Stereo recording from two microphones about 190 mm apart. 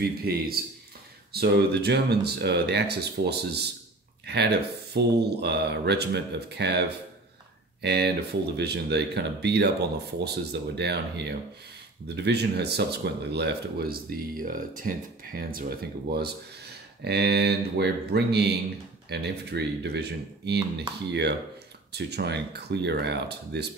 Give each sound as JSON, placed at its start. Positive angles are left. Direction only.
{"t": 0.0, "sound": "a man's voice", "side_deg": -55}
{"t": 7.8, "sound": "speech", "side_deg": -60}